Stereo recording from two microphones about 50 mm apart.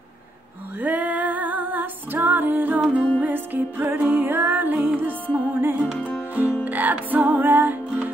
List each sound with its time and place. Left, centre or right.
0.7 s music: right
5.9 s music: left
6.6 s music: right